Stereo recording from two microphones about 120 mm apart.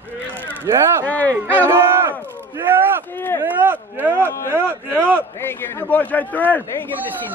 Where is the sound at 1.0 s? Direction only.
15° left (ahead or behind).